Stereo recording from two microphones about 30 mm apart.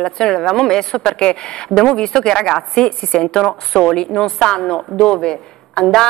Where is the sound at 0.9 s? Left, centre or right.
Left.